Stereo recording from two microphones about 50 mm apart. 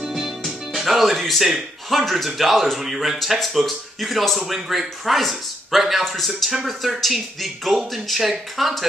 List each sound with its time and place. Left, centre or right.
0.0 s music: centre
0.7 s a man's voice: centre